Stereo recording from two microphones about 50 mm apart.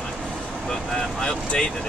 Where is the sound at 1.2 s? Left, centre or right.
Centre.